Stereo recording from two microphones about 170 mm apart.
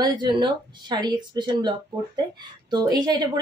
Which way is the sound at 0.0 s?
25° right (ahead or behind).